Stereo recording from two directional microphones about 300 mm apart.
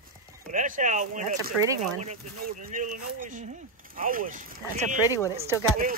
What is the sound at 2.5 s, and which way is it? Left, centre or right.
Speech, right.